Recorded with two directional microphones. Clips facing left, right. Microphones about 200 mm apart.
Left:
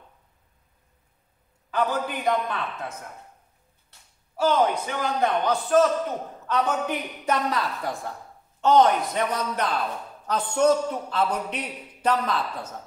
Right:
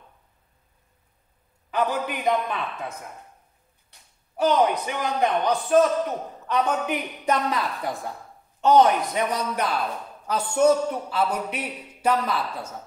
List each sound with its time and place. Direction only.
1.7 s a man's voice: 15° right (ahead or behind)
3.9 s a man's voice: 15° right (ahead or behind)